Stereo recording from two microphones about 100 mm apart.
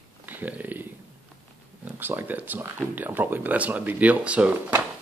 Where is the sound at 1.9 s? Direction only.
20° right (ahead or behind).